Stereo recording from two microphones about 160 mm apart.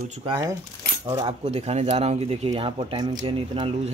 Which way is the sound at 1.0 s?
30° right (ahead or behind).